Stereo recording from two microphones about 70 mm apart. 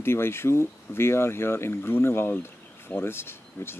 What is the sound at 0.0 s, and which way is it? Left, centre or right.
Speech, left.